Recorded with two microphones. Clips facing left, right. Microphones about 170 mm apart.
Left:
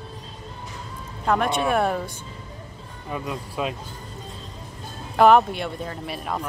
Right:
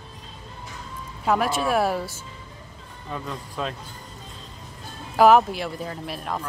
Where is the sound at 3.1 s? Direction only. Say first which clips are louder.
Left 3 dB; 10° left (ahead or behind).